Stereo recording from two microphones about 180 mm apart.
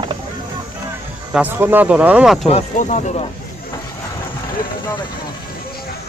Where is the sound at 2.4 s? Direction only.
40° left (ahead or behind).